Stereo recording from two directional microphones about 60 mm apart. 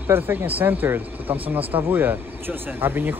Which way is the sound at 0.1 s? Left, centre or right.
Right.